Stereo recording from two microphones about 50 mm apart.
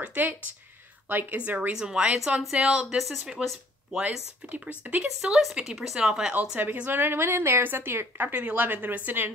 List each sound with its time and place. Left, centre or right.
0.0 s a woman's voice: right
1.7 s speech: centre
4.5 s speech: right
5.0 s speech: centre
6.6 s a woman's voice: right